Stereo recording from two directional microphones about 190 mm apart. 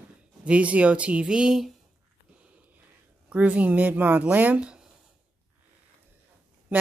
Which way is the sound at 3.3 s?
5° right (ahead or behind).